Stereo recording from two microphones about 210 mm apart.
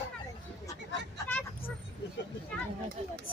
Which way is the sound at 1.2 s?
10° left (ahead or behind).